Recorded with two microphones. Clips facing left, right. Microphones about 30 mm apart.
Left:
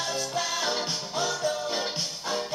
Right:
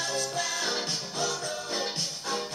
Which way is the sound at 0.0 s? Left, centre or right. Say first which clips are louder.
Left 1 dB; centre.